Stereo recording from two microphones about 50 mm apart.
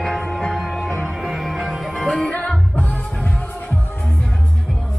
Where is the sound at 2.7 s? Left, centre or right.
Left.